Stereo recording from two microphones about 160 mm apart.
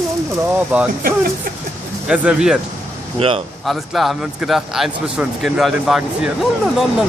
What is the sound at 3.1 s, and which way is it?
Speech, 35° right (ahead or behind).